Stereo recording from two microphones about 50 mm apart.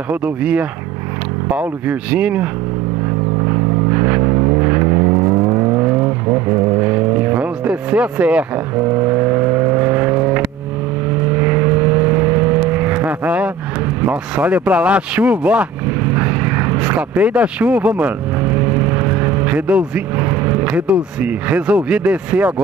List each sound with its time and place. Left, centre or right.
0.1 s speech: right
3.4 s vehicle: right
8.9 s vehicle: right
14.3 s speech: right
16.0 s vehicle: right
20.6 s speech: right